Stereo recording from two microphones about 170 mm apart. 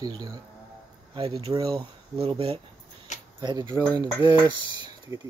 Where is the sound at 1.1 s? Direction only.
35° right (ahead or behind).